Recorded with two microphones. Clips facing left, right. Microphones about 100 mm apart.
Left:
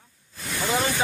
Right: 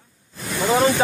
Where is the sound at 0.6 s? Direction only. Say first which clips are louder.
Right 8 dB; 45° right (ahead or behind).